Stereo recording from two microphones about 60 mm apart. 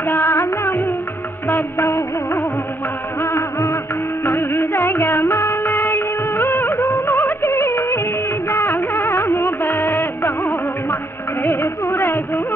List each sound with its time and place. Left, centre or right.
0.0 s music of bollywood: left
3.2 s music: left
4.2 s music of bollywood: left
5.7 s music of bollywood: left
11.4 s music: left